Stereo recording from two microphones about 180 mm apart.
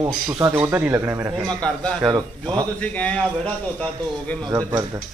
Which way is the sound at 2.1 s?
25° right (ahead or behind).